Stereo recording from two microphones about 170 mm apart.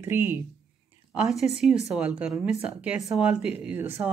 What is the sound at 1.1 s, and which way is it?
Speech, centre (ahead or behind).